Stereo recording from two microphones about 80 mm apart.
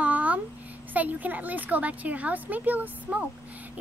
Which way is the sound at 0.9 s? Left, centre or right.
Right.